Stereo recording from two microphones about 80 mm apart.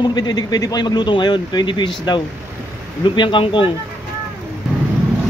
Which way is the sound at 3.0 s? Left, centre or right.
Left.